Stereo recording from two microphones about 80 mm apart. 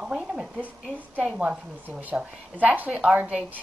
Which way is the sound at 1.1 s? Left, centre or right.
Centre.